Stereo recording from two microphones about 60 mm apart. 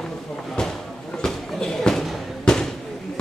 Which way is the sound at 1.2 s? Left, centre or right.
Centre.